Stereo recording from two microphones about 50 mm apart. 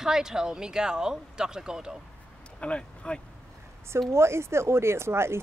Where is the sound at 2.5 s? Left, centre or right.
Left.